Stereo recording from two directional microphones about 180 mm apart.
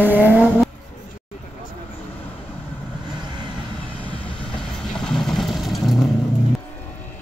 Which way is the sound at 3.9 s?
30° left (ahead or behind).